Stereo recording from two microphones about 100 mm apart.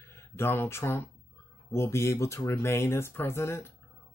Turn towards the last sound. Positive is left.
turn(degrees=25)  # may be behind; listen again after turning